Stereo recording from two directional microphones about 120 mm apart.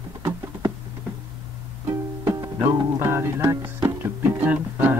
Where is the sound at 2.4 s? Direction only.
20° right (ahead or behind).